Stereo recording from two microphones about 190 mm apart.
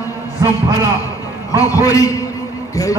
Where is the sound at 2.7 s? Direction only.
20° left (ahead or behind).